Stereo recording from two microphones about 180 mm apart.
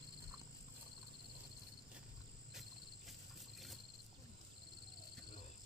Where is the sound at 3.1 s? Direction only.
Centre (ahead or behind).